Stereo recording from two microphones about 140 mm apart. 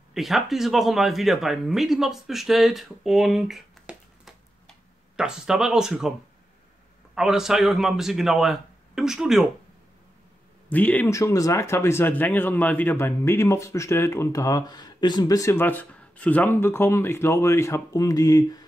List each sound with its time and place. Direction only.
0.1 s speech: centre (ahead or behind)
7.2 s speech: 5° right (ahead or behind)
10.7 s speech: 10° left (ahead or behind)
11.1 s speech: 25° left (ahead or behind)